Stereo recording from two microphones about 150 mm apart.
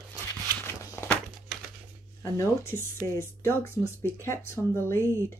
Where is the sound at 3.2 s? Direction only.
15° left (ahead or behind).